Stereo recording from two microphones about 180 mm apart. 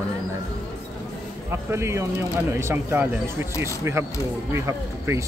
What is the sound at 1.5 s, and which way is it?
Speech, 15° right (ahead or behind).